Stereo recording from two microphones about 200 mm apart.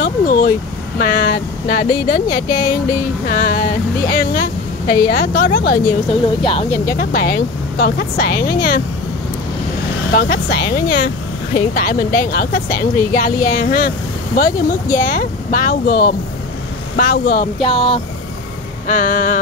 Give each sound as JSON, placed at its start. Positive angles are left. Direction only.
{"t": 0.0, "sound": "a sound", "side_deg": 45}
{"t": 0.9, "sound": "a woman's voice", "side_deg": 45}
{"t": 2.2, "sound": "a woman's voice", "side_deg": 20}
{"t": 3.3, "sound": "a woman's voice", "side_deg": 40}
{"t": 4.8, "sound": "a woman's voice", "side_deg": 20}
{"t": 5.1, "sound": "a woman's voice", "side_deg": 45}
{"t": 5.9, "sound": "a woman's voice", "side_deg": 25}
{"t": 7.0, "sound": "a woman's voice", "side_deg": 45}
{"t": 10.1, "sound": "a woman's voice", "side_deg": 45}
{"t": 17.6, "sound": "a woman's voice", "side_deg": 25}
{"t": 18.9, "sound": "vehicle", "side_deg": 40}